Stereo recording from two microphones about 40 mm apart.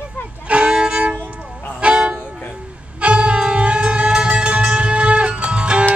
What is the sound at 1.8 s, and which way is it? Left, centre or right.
Music, right.